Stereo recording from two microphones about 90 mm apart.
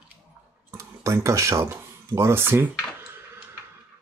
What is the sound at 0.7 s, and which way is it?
Speech, 30° right (ahead or behind).